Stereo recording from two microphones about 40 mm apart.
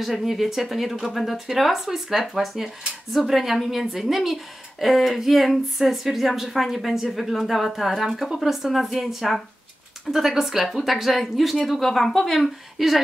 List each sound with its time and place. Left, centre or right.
0.0 s speech: centre
10.1 s speech: left
10.4 s speech: centre
12.4 s speech: centre